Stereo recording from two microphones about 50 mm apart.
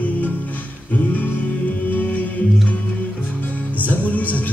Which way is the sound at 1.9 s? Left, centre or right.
Left.